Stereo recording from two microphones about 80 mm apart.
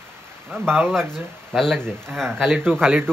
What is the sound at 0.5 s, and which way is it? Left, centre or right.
Speech, right.